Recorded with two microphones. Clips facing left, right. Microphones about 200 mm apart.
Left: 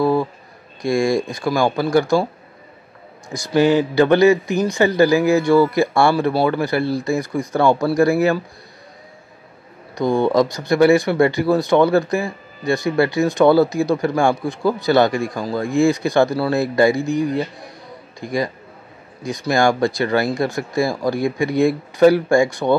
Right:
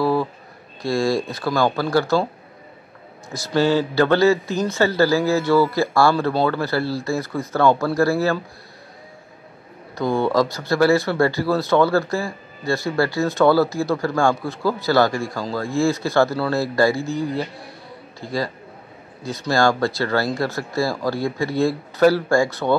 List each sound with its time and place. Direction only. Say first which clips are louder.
0.0 s a sound: left 2 dB; 15° left (ahead or behind)
0.8 s speech: left 3 dB; 15° left (ahead or behind)
3.3 s speech: left 3 dB; 15° left (ahead or behind)
9.9 s speech: left 3 dB; 15° left (ahead or behind)